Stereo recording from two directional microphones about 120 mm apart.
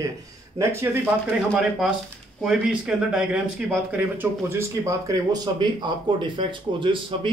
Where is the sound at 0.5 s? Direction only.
20° right (ahead or behind).